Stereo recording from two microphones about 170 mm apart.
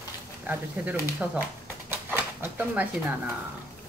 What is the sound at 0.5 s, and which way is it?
Speech, 10° right (ahead or behind).